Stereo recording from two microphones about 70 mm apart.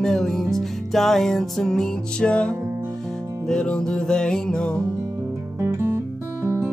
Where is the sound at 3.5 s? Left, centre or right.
Centre.